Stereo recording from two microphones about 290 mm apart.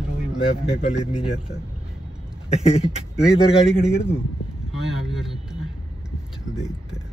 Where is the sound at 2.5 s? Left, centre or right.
Left.